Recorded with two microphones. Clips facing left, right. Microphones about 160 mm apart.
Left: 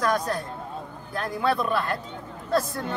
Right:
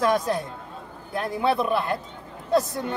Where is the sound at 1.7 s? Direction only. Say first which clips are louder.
Right 2 dB; 20° right (ahead or behind).